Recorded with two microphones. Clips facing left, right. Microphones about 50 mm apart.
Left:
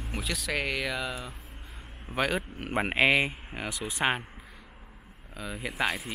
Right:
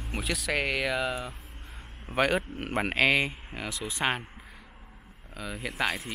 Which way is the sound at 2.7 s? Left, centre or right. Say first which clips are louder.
Left 1 dB; centre.